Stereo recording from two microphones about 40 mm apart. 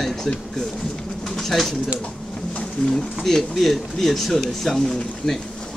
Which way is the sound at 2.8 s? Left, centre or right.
Centre.